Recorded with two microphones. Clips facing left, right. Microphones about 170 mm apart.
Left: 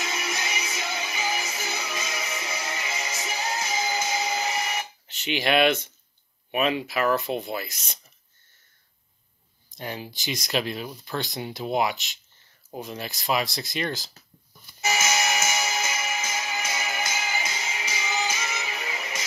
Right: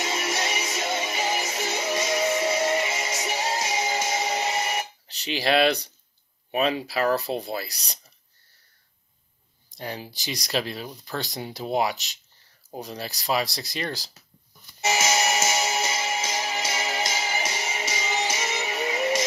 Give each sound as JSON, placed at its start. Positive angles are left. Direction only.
{"t": 0.0, "sound": "music", "side_deg": -25}
{"t": 6.5, "sound": "speech", "side_deg": -35}
{"t": 9.7, "sound": "speech", "side_deg": -35}
{"t": 14.9, "sound": "music", "side_deg": -30}